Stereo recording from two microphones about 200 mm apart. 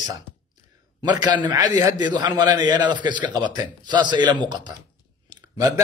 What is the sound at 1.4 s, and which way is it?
A man's voice, 20° right (ahead or behind).